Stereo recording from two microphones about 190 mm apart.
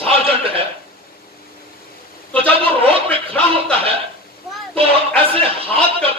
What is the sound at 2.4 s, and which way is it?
Speech, 30° right (ahead or behind).